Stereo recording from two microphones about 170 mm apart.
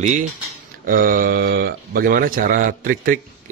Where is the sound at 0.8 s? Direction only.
55° right (ahead or behind).